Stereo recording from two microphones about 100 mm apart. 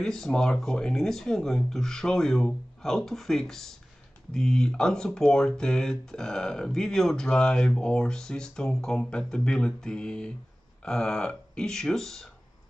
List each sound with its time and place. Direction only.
0.0 s speech: 5° left (ahead or behind)